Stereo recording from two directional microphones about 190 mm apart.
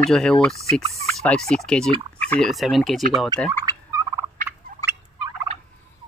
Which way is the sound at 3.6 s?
20° right (ahead or behind).